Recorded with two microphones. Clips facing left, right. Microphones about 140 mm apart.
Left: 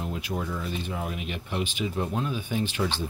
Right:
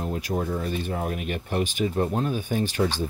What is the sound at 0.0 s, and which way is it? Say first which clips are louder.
Speech: right 4 dB; 40° right (ahead or behind).